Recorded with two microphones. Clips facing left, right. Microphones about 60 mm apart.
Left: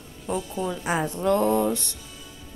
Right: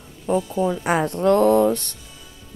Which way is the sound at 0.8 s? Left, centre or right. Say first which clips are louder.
Right 4 dB; right.